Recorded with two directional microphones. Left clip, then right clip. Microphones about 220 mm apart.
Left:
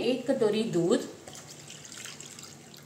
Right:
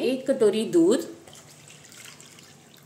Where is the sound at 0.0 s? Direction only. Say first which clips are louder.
Right 5 dB; 50° right (ahead or behind).